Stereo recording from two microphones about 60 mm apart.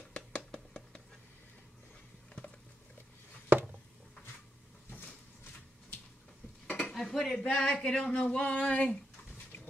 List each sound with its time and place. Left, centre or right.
0.1 s a sound: centre
6.7 s dishes: centre
7.0 s speech: centre